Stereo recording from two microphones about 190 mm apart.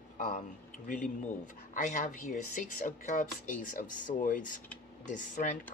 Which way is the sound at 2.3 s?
45° left (ahead or behind).